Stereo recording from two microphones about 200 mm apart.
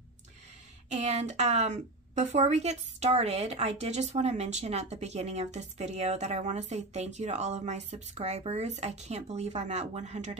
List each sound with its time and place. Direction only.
0.8 s a woman's voice: 35° right (ahead or behind)